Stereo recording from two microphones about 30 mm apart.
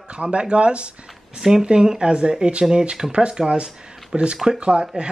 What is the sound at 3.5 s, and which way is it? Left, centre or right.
Speech, right.